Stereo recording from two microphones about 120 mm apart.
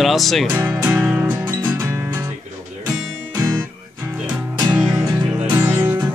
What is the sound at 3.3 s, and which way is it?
Music, 30° right (ahead or behind).